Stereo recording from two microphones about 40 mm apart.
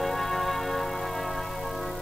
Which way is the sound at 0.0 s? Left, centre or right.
Centre.